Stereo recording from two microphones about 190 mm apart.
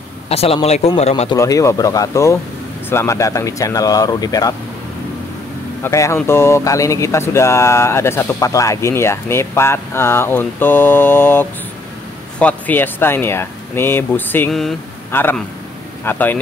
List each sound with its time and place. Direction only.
0.3 s speech: 30° left (ahead or behind)
1.3 s speech: 15° left (ahead or behind)
5.9 s speech: 15° left (ahead or behind)